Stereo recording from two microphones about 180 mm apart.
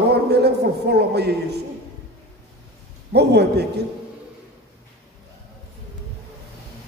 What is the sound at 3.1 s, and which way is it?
Speech, 65° right (ahead or behind).